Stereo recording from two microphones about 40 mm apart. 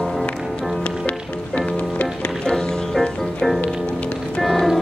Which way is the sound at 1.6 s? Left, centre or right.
Left.